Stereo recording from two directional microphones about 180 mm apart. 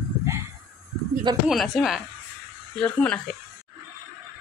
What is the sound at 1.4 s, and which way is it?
Speech, centre (ahead or behind).